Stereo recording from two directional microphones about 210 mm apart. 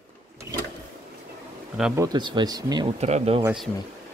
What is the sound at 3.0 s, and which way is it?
Speech, 30° right (ahead or behind).